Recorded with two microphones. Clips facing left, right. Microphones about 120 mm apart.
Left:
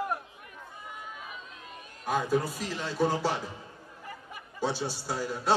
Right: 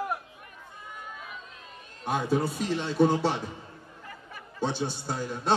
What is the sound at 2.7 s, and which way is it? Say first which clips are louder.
Music: right 7 dB; 25° right (ahead or behind).